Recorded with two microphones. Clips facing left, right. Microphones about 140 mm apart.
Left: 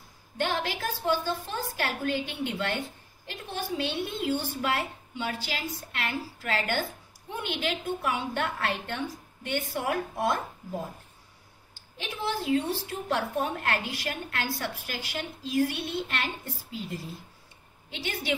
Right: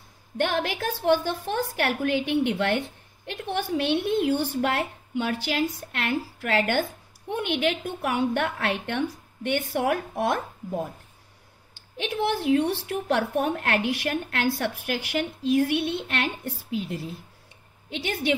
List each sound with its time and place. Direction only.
0.4 s a woman's voice: 55° right (ahead or behind)
12.0 s a woman's voice: 60° right (ahead or behind)